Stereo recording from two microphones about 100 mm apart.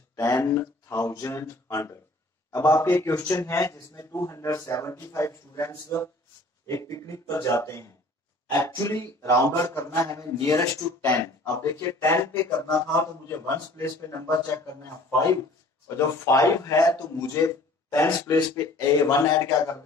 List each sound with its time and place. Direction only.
0.1 s a man's voice: 30° left (ahead or behind)
12.5 s speech: 40° left (ahead or behind)
13.0 s a man's voice: 25° left (ahead or behind)